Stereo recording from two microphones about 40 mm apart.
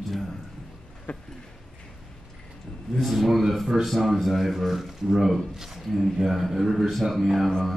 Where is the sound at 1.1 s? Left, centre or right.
Left.